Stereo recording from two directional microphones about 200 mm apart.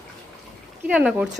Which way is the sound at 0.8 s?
5° right (ahead or behind).